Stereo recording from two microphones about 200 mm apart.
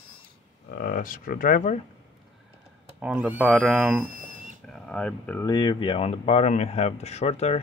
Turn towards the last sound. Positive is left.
turn(degrees=30)  # may be behind; listen again after turning